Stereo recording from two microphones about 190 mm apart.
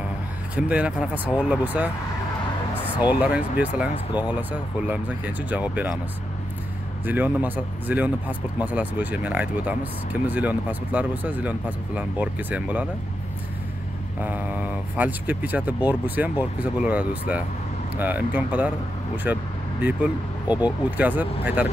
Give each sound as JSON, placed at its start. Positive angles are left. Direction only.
{"t": 0.6, "sound": "speech", "side_deg": -5}
{"t": 3.1, "sound": "speech", "side_deg": -5}
{"t": 7.1, "sound": "speech", "side_deg": -10}
{"t": 14.2, "sound": "speech", "side_deg": -10}
{"t": 20.4, "sound": "speech", "side_deg": 20}
{"t": 21.0, "sound": "speech", "side_deg": -10}